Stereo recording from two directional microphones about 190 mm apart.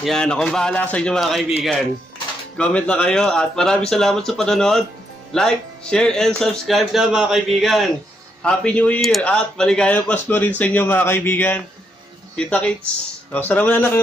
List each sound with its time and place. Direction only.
0.0 s speech: 5° left (ahead or behind)